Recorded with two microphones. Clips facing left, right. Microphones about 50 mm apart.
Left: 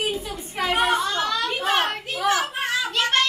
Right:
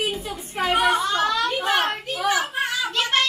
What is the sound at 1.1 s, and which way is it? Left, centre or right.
Speech, right.